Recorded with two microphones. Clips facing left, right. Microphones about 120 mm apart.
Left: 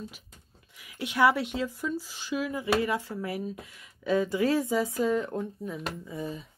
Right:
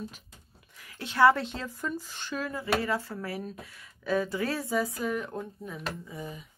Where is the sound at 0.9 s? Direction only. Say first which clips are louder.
Right 2 dB; 10° left (ahead or behind).